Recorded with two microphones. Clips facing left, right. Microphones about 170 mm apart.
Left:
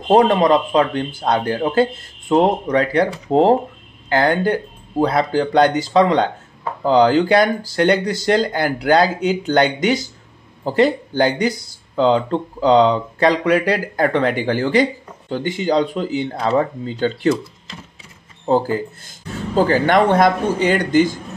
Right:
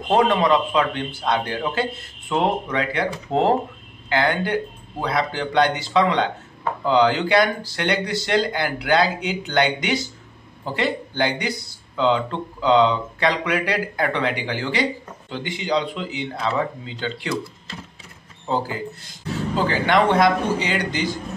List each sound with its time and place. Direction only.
0.1 s speech: 40° left (ahead or behind)
18.4 s speech: 45° left (ahead or behind)